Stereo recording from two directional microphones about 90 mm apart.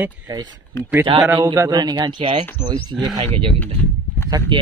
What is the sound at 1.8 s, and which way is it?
Speech, 50° right (ahead or behind).